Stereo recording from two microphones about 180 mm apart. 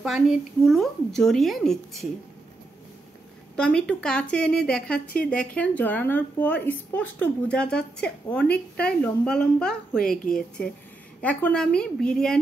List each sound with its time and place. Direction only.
0.0 s a woman's voice: centre (ahead or behind)
3.5 s a woman's voice: 5° left (ahead or behind)
4.9 s a woman's voice: 55° left (ahead or behind)
5.3 s a woman's voice: 5° left (ahead or behind)